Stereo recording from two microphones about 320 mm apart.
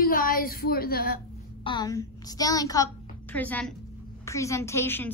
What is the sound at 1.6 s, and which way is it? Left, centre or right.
A woman's voice, centre.